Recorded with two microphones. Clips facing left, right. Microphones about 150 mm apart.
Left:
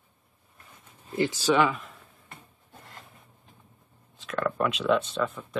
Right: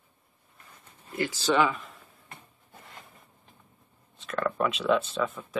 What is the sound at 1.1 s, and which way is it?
Speech, 20° left (ahead or behind).